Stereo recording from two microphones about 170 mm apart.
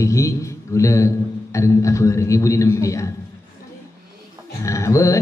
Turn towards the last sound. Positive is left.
turn(degrees=20)  # may be behind; listen again after turning